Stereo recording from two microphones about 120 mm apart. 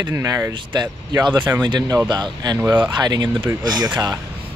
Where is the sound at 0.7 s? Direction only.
40° right (ahead or behind).